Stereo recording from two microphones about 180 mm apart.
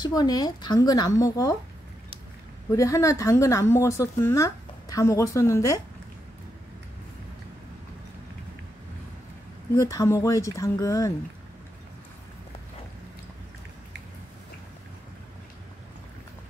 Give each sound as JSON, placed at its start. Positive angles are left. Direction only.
{"t": 0.0, "sound": "speech", "side_deg": 20}
{"t": 2.7, "sound": "speech", "side_deg": 15}
{"t": 9.8, "sound": "speech", "side_deg": 15}